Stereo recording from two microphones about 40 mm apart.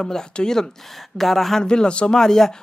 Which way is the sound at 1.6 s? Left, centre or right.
Left.